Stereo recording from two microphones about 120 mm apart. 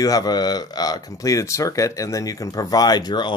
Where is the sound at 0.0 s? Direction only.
30° left (ahead or behind).